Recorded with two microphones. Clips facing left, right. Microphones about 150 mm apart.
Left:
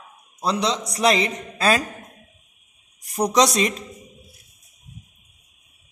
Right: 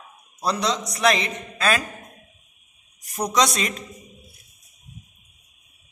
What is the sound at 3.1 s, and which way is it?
Speech, 35° left (ahead or behind).